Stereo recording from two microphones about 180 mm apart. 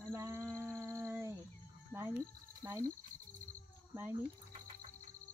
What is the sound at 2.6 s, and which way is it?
Cricket, 15° right (ahead or behind).